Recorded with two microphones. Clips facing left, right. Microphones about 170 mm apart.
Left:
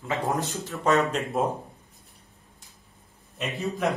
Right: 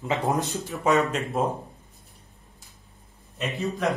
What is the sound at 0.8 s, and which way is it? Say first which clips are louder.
Speech: even; centre (ahead or behind).